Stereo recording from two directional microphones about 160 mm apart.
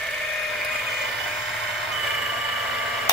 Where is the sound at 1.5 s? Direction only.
Centre (ahead or behind).